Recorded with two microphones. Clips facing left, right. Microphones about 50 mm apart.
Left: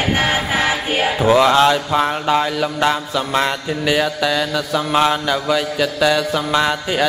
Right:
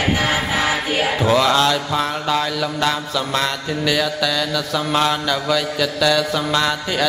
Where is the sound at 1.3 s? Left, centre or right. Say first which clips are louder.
Left 4 dB; left.